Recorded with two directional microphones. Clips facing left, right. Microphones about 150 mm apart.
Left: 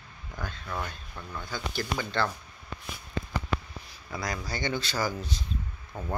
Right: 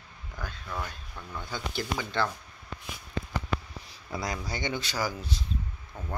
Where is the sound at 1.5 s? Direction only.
15° right (ahead or behind).